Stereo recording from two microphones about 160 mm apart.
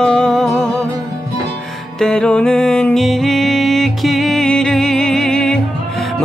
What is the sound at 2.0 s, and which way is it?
Music, 5° left (ahead or behind).